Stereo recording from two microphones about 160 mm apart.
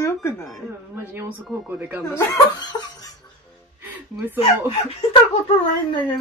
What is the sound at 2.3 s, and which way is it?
Laughter, 20° left (ahead or behind).